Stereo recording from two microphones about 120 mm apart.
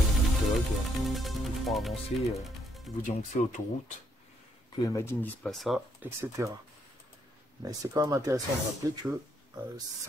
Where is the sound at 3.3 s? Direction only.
90° left.